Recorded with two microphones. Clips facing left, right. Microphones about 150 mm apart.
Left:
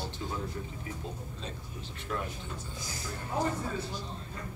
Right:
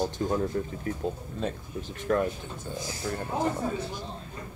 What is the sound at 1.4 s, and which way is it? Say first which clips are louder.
Speech: right 13 dB; 50° right (ahead or behind).